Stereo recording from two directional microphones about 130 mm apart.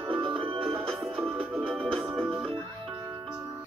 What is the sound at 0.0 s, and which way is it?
Music, 40° right (ahead or behind).